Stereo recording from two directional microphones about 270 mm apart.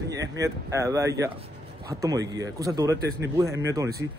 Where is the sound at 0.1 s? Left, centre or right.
Centre.